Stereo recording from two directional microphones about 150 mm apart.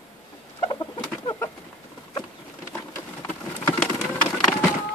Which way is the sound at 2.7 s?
10° left (ahead or behind).